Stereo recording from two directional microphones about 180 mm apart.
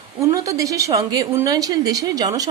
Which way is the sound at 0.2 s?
20° right (ahead or behind).